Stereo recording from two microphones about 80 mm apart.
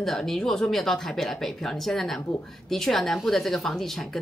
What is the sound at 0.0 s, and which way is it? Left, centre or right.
A woman's voice, centre.